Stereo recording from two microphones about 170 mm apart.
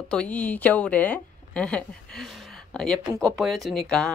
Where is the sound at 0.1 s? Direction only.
5° left (ahead or behind).